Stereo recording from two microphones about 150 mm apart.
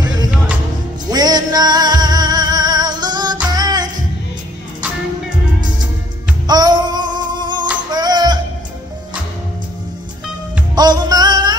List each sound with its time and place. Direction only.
0.0 s music: 25° right (ahead or behind)
6.4 s music: 25° right (ahead or behind)
10.7 s music: 30° right (ahead or behind)